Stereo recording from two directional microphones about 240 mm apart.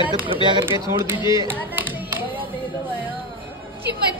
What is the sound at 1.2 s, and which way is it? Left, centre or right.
Speech, centre.